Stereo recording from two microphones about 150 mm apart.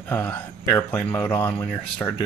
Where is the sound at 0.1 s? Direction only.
15° left (ahead or behind).